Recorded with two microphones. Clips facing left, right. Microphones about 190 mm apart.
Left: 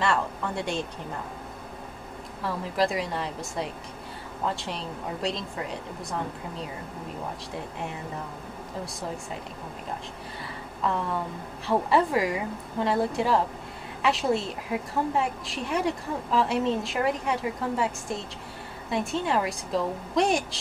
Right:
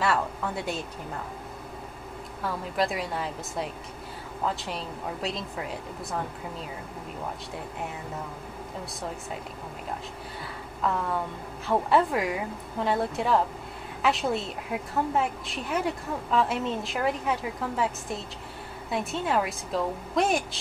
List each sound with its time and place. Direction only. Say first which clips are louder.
0.0 s a woman's voice: even; 5° right (ahead or behind)
2.4 s a woman's voice: left 2 dB; centre (ahead or behind)
11.6 s a woman's voice: even; centre (ahead or behind)